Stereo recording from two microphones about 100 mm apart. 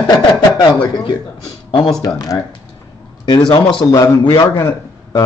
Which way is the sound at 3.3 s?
50° left (ahead or behind).